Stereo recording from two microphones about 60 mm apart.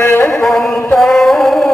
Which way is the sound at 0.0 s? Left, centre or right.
Left.